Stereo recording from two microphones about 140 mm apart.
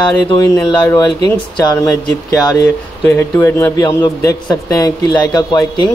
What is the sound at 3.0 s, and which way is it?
Speech, 15° left (ahead or behind).